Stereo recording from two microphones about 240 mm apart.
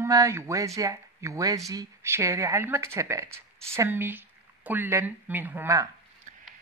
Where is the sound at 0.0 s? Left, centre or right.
Centre.